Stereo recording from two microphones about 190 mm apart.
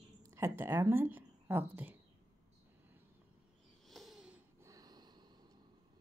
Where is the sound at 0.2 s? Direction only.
15° right (ahead or behind).